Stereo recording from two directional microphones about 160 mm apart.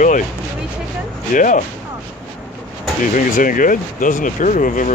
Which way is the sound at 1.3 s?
55° left (ahead or behind).